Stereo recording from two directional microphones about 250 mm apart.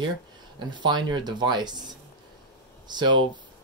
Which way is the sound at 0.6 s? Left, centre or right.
Centre.